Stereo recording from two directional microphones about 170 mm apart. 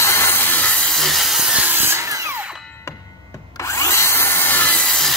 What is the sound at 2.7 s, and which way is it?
Drill, 15° left (ahead or behind).